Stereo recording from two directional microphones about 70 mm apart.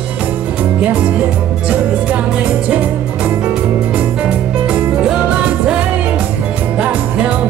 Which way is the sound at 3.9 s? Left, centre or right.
Right.